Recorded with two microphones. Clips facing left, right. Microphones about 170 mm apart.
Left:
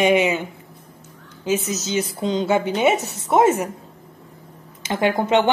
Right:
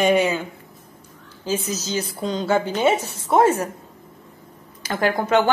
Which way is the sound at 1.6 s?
25° left (ahead or behind).